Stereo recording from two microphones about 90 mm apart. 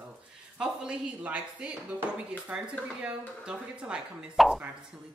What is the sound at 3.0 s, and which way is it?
Speech, 10° right (ahead or behind).